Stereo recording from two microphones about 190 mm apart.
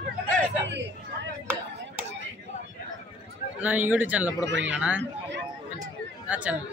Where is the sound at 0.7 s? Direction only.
70° right (ahead or behind).